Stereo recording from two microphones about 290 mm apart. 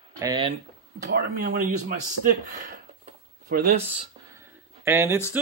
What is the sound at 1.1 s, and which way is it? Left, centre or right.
Speech, right.